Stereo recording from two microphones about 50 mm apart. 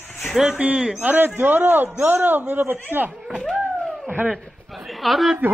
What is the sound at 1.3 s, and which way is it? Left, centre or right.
A man's voice, right.